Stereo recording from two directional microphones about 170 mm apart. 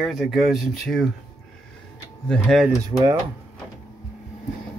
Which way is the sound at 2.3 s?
5° left (ahead or behind).